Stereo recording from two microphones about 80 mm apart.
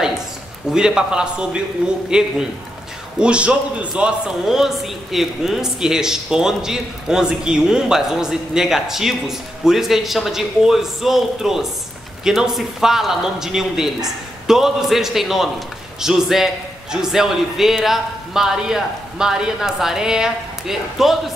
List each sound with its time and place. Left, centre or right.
0.7 s a man's voice: centre